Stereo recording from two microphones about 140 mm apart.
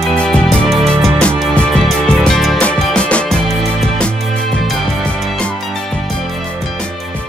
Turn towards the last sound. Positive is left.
turn(degrees=5)  # may be behind; listen again after turning